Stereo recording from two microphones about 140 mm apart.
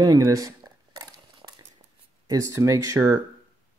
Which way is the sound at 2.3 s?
20° right (ahead or behind).